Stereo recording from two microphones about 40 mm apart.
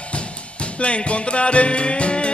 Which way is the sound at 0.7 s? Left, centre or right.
Left.